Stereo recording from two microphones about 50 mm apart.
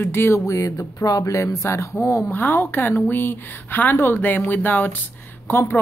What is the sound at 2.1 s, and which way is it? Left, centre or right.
Speech, left.